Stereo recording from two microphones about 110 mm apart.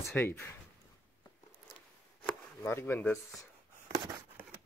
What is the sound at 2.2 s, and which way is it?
Chopping, 20° left (ahead or behind).